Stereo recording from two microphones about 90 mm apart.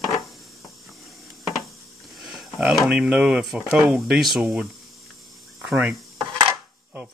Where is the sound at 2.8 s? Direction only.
10° right (ahead or behind).